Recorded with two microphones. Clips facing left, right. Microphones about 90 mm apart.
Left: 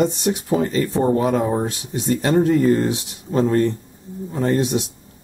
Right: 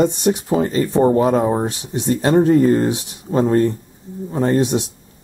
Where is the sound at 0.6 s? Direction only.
25° right (ahead or behind).